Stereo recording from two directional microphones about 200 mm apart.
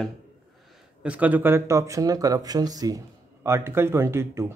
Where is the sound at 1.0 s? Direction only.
5° right (ahead or behind).